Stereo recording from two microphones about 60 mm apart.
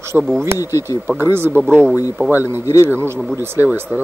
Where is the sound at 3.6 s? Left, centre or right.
Left.